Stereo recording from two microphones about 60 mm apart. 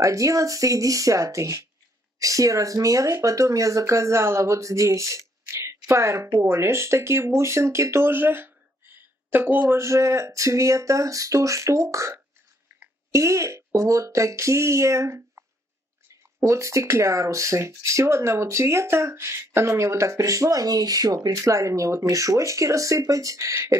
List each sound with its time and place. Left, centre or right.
0.0 s speech: right
2.1 s speech: right
9.8 s speech: right
16.4 s speech: right
22.0 s speech: right